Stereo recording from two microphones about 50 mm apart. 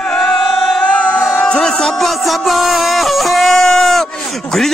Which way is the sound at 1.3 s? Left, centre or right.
Centre.